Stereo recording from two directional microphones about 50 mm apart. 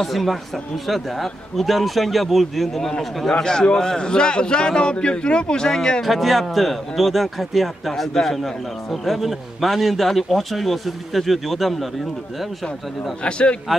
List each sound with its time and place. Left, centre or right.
0.0 s a man's voice: centre
6.0 s speech: centre
13.2 s a man's voice: left